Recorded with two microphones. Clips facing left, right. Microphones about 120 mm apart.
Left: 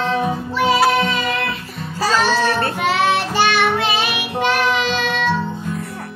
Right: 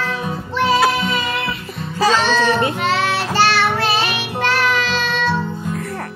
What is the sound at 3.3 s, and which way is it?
Child singing, 15° left (ahead or behind).